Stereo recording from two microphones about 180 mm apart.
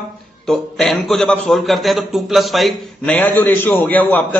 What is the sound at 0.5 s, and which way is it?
A man's voice, centre (ahead or behind).